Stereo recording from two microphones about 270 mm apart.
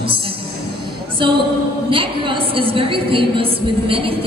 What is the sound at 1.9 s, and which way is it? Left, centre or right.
A woman's voice, centre.